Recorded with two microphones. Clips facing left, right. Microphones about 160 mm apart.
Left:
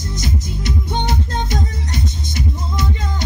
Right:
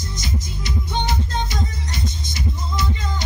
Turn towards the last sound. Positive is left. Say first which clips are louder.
# left 2 dB
turn(degrees=55)  # may be behind; listen again after turning